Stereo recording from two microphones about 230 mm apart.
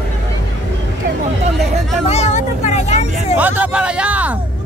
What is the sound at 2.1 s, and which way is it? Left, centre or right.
Vehicle, left.